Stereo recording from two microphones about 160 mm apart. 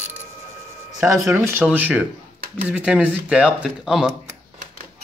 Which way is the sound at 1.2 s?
15° right (ahead or behind).